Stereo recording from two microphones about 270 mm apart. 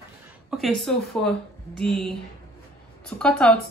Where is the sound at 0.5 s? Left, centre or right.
Centre.